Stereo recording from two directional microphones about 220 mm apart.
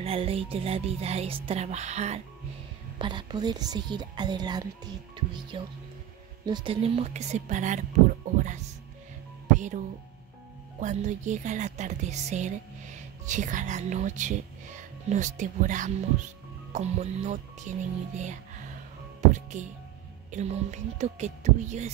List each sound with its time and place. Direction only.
0.0 s speech: 25° right (ahead or behind)
3.0 s a woman's voice: 20° right (ahead or behind)